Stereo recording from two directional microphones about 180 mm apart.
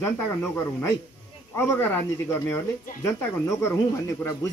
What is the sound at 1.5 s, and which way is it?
Speech, 10° left (ahead or behind).